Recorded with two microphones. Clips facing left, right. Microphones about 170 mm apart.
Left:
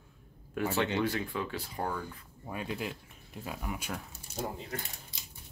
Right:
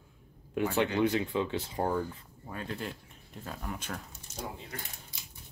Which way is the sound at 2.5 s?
10° left (ahead or behind).